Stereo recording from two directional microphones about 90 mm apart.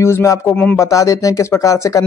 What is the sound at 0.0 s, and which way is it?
Speech, 35° left (ahead or behind).